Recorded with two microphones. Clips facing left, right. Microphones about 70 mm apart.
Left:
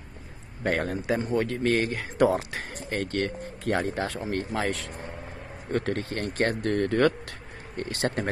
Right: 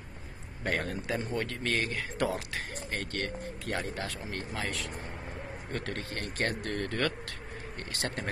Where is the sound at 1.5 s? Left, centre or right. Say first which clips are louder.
Left 7 dB; left.